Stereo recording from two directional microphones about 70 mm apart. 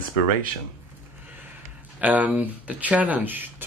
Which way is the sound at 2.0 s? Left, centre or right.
Right.